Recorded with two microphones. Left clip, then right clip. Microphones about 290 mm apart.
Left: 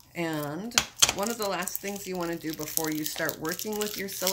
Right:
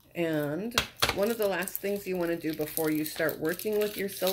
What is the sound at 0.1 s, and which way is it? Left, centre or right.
Speech, left.